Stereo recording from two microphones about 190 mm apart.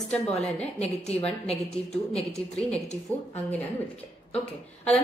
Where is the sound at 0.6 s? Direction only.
35° left (ahead or behind).